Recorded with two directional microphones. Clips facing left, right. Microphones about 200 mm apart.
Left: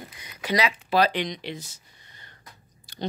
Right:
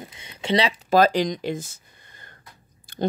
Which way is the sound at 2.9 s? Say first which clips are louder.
Right 8 dB; 50° right (ahead or behind).